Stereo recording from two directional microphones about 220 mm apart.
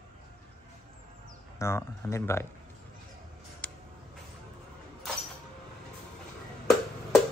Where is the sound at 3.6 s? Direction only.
5° left (ahead or behind).